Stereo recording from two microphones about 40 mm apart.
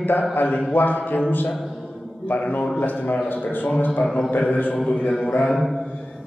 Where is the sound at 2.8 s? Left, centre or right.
Left.